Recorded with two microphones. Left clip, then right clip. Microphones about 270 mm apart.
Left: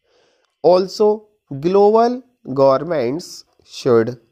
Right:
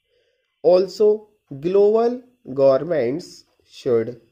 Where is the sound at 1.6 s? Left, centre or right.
Left.